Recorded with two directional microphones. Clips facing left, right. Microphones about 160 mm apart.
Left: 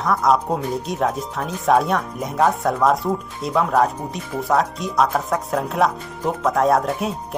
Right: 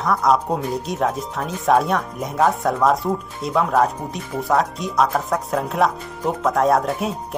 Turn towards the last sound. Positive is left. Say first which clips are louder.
# even
turn(degrees=0)  # may be behind; listen again after turning